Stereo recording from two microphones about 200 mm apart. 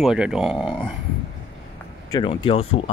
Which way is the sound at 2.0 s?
25° left (ahead or behind).